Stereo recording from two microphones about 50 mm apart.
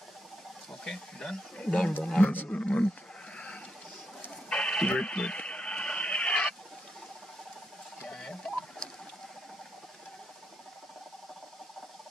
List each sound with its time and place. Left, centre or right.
0.7 s speech: centre
2.2 s speech: left
2.6 s roaring cats: left
4.5 s radio: centre
8.1 s a sound: centre